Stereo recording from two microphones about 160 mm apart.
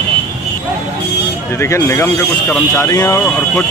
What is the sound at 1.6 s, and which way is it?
Speech, 15° left (ahead or behind).